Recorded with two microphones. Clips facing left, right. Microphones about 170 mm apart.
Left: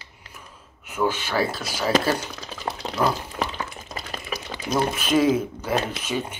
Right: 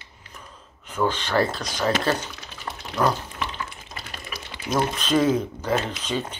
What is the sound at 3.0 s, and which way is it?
Speech, 10° left (ahead or behind).